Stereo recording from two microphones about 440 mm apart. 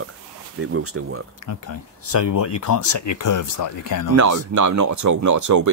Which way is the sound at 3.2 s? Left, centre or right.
Left.